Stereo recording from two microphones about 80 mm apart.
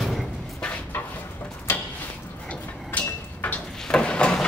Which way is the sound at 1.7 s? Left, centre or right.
Left.